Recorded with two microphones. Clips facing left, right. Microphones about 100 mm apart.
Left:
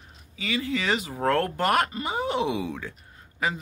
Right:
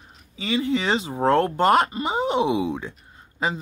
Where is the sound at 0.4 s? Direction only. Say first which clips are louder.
Right 5 dB; 25° right (ahead or behind).